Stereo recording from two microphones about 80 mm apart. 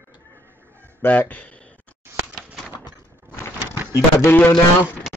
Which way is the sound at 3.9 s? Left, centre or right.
Left.